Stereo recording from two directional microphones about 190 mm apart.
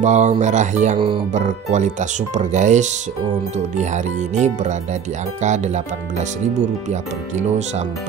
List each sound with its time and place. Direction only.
0.0 s speech: 40° right (ahead or behind)